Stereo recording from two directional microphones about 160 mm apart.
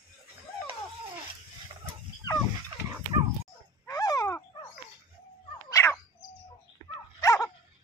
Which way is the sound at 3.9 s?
20° left (ahead or behind).